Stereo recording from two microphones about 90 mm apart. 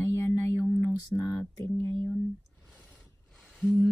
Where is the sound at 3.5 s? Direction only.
Centre (ahead or behind).